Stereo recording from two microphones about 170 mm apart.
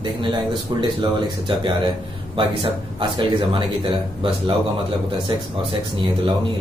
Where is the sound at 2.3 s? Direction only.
30° right (ahead or behind).